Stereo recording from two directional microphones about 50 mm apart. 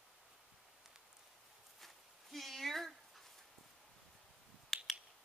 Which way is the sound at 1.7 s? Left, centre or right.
Centre.